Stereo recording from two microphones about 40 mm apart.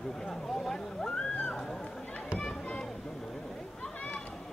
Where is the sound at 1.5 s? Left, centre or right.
Centre.